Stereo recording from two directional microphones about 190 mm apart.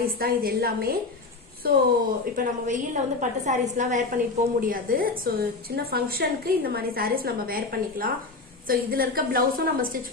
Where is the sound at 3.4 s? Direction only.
40° right (ahead or behind).